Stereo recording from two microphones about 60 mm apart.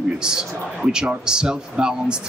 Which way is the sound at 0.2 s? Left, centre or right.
Centre.